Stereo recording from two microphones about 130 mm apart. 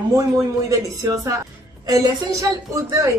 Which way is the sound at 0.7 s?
25° right (ahead or behind).